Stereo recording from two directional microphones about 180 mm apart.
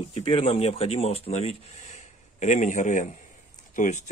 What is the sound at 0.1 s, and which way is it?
Speech, 30° left (ahead or behind).